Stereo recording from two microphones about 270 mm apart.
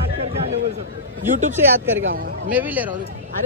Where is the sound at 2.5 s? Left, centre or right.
Centre.